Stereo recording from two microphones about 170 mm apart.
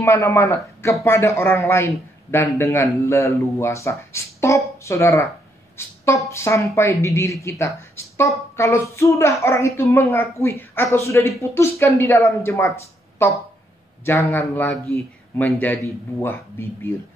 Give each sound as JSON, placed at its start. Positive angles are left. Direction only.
{"t": 0.0, "sound": "a child's voice", "side_deg": 15}
{"t": 14.3, "sound": "a child's voice", "side_deg": 15}